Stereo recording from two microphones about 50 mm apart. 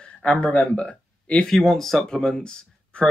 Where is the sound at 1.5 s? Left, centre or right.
Centre.